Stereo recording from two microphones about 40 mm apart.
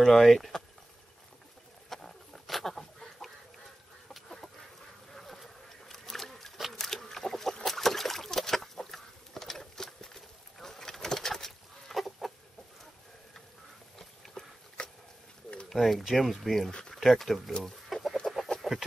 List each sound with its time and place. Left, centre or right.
0.0 s speech: centre
1.9 s chicken: centre
5.1 s a sound: centre
11.9 s chicken: centre
13.9 s a sound: centre
14.8 s dog: left
15.7 s speech: centre
17.8 s chicken: centre